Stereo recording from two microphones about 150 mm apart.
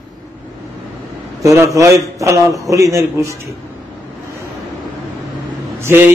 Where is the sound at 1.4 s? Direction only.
20° right (ahead or behind).